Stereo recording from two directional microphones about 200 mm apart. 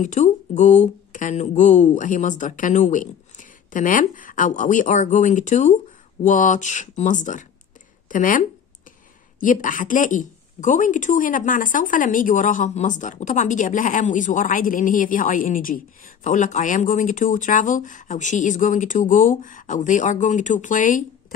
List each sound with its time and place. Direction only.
0.0 s a woman's voice: 35° left (ahead or behind)